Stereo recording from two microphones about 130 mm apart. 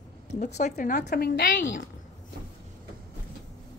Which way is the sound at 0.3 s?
65° left (ahead or behind).